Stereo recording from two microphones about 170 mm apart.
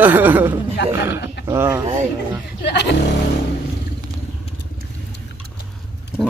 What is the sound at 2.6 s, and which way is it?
Speech, 90° left.